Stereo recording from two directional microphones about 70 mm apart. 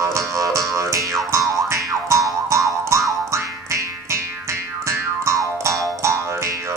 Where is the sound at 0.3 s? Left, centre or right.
Right.